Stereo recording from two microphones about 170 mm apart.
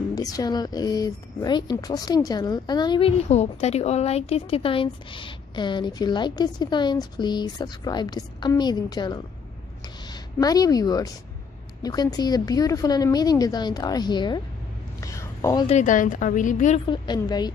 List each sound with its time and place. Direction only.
0.1 s speech: 20° left (ahead or behind)
10.4 s speech: 20° left (ahead or behind)
15.0 s a sound: 20° left (ahead or behind)
15.6 s speech: 45° left (ahead or behind)
16.8 s speech: 25° left (ahead or behind)